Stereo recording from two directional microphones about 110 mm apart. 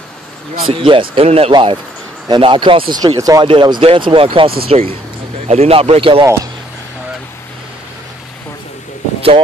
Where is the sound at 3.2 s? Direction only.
35° right (ahead or behind).